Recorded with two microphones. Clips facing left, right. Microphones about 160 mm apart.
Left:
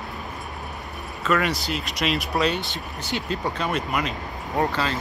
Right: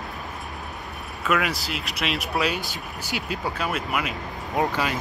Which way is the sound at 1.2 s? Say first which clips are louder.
Left 2 dB; 5° right (ahead or behind).